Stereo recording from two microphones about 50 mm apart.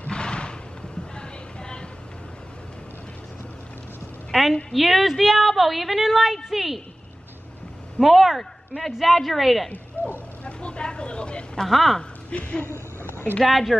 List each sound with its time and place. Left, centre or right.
0.1 s a sound: centre
1.1 s music: centre
4.3 s a sound: centre
4.7 s a woman's voice: centre
8.0 s a woman's voice: centre
10.4 s a sound: left
11.6 s a woman's voice: centre
12.3 s speech: left
13.4 s a woman's voice: centre